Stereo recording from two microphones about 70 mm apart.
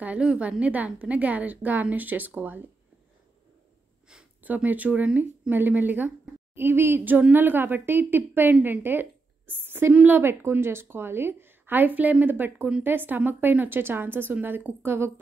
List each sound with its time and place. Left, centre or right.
0.0 s a woman's voice: centre
4.4 s a woman's voice: right